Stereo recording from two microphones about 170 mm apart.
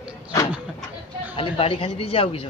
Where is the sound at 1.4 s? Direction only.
35° left (ahead or behind).